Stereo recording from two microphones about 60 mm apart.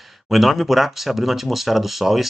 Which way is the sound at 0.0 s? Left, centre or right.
Centre.